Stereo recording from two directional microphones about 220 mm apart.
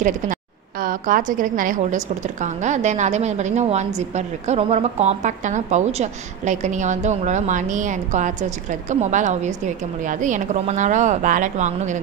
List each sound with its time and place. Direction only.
0.8 s a woman's voice: 40° right (ahead or behind)